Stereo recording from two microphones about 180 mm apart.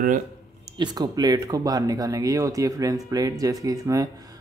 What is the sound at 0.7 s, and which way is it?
Speech, 25° right (ahead or behind).